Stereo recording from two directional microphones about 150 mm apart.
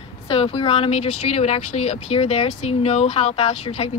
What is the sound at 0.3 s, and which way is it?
Speech, 40° left (ahead or behind).